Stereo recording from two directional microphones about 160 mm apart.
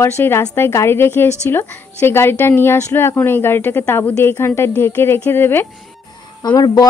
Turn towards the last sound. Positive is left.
turn(degrees=25)  # may be behind; listen again after turning